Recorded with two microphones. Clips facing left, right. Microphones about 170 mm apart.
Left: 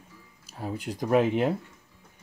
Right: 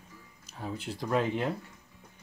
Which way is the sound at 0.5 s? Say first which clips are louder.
Left 4 dB; 10° left (ahead or behind).